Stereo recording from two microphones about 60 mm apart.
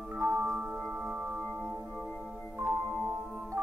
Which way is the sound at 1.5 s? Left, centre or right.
Centre.